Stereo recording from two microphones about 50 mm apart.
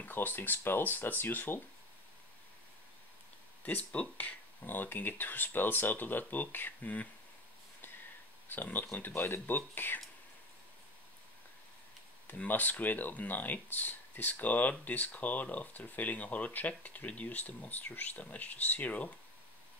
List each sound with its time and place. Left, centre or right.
0.0 s speech: left
3.6 s speech: left
8.5 s speech: left
12.3 s speech: left